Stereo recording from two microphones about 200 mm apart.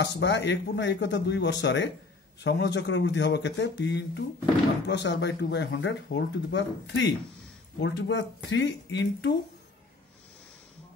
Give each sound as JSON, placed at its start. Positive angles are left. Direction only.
{"t": 0.0, "sound": "speech", "side_deg": 60}